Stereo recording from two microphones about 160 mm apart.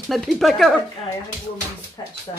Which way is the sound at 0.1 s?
Centre (ahead or behind).